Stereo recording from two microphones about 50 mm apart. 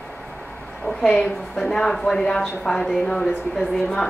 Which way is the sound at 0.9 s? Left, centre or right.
Centre.